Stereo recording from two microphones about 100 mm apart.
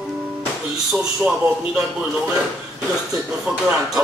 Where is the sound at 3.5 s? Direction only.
10° right (ahead or behind).